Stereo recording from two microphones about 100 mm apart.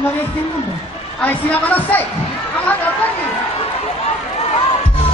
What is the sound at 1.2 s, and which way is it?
Speech, 15° left (ahead or behind).